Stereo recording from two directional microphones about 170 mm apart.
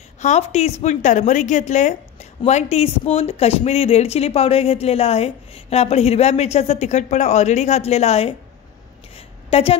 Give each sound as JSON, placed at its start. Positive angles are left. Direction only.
{"t": 0.2, "sound": "a woman's voice", "side_deg": 40}
{"t": 9.5, "sound": "speech", "side_deg": 35}